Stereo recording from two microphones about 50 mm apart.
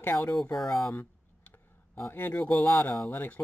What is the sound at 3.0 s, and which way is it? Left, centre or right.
Speech, left.